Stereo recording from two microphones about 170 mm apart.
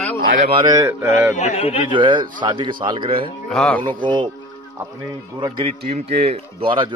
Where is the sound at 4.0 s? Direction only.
30° right (ahead or behind).